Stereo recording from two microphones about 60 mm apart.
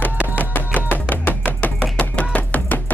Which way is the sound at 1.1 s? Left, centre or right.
Left.